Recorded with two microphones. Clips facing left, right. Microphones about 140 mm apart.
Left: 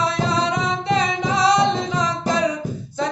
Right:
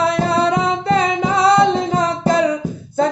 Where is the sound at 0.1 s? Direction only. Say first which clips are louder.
Right 5 dB; 55° right (ahead or behind).